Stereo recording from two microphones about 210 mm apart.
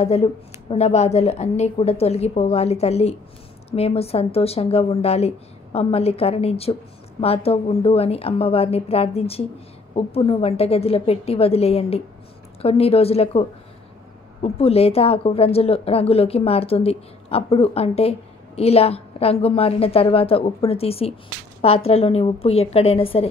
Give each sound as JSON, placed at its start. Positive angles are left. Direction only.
{"t": 0.0, "sound": "a woman's voice", "side_deg": 30}